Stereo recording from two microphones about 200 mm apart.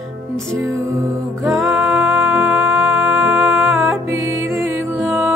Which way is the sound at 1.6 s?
Centre (ahead or behind).